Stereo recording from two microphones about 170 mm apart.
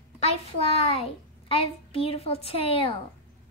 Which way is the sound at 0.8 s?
35° left (ahead or behind).